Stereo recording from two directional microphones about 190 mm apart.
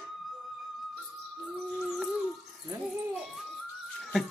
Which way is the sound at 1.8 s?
Centre (ahead or behind).